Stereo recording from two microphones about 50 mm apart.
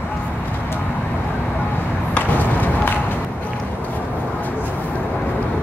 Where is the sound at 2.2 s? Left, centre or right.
Left.